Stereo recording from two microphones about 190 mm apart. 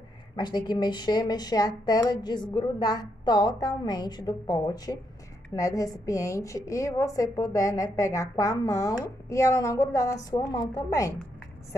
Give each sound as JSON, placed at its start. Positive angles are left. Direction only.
{"t": 0.4, "sound": "a woman's voice", "side_deg": 20}